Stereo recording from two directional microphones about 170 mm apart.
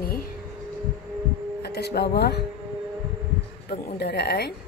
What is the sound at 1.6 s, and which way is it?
Speech, 75° left (ahead or behind).